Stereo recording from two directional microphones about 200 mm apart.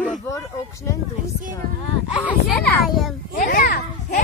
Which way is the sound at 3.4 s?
45° left (ahead or behind).